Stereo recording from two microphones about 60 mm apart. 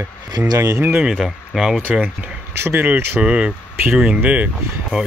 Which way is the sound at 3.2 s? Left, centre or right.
Centre.